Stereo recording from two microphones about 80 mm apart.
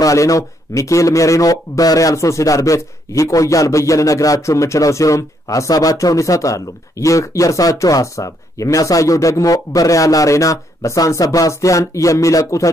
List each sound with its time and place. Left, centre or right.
0.0 s speech: left